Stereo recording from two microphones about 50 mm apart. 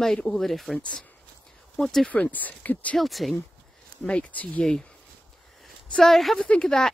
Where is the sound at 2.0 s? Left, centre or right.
Left.